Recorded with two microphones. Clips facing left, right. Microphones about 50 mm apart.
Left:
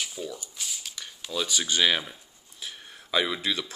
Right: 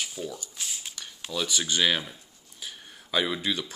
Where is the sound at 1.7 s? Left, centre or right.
Left.